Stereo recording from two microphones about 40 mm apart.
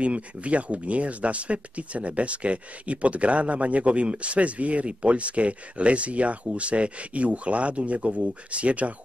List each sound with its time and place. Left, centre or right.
0.0 s speech: right